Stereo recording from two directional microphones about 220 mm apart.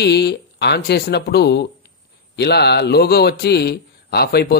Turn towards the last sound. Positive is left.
turn(degrees=45)  # may be behind; listen again after turning